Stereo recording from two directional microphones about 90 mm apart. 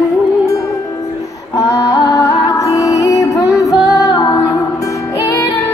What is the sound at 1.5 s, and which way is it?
Music, 40° left (ahead or behind).